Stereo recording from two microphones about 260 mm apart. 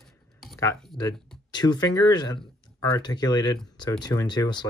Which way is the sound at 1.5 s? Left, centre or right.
Centre.